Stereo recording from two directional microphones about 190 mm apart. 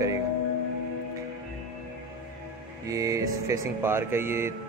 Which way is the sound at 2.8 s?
15° right (ahead or behind).